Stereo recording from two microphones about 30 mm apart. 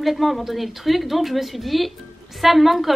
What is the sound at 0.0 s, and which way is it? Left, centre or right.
A woman's voice, centre.